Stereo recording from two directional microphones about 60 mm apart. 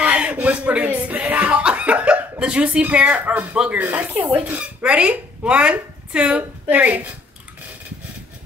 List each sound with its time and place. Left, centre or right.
0.0 s chuckle: right
3.7 s speech: right